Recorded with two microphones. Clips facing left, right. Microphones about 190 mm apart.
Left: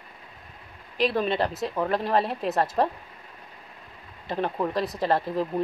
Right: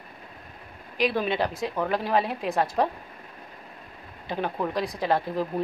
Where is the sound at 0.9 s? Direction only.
Centre (ahead or behind).